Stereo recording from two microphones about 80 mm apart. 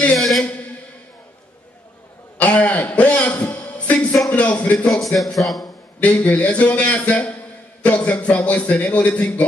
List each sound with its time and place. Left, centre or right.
0.1 s a sound: centre
2.3 s cough: centre
3.4 s a sound: centre
4.3 s music: centre
4.8 s speech: centre
5.9 s a man's voice: centre